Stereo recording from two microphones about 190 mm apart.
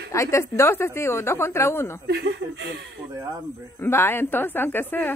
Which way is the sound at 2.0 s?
60° right (ahead or behind).